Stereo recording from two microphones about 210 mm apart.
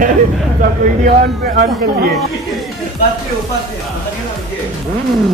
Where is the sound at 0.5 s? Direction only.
45° right (ahead or behind).